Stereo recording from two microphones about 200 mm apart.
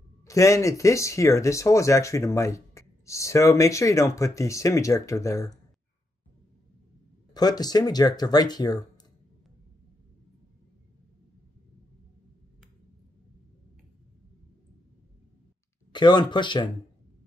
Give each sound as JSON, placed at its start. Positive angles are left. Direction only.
{"t": 0.2, "sound": "speech", "side_deg": 15}
{"t": 7.3, "sound": "speech", "side_deg": 20}
{"t": 15.9, "sound": "speech", "side_deg": 20}